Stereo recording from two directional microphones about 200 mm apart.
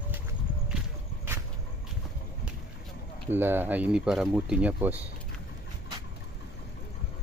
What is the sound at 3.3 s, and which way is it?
Speech, 10° right (ahead or behind).